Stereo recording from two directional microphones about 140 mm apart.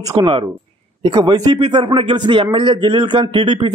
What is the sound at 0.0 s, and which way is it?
A man's voice, 25° right (ahead or behind).